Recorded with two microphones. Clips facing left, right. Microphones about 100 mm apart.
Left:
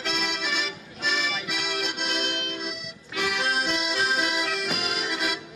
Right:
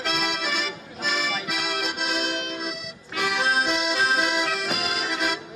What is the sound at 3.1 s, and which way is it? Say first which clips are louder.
Accordion: right 3 dB; 35° right (ahead or behind).